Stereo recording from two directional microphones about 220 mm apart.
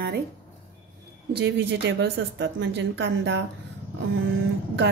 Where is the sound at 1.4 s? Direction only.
50° right (ahead or behind).